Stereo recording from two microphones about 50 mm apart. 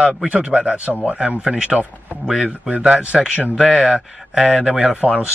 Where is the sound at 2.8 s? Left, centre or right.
Centre.